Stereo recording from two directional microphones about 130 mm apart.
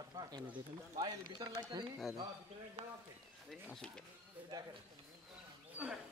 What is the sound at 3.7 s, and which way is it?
Speech, 5° left (ahead or behind).